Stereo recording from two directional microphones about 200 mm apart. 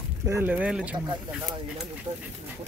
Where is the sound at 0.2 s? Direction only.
10° right (ahead or behind).